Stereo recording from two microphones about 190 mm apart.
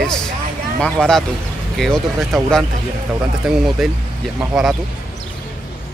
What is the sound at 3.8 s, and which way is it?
Speech, centre (ahead or behind).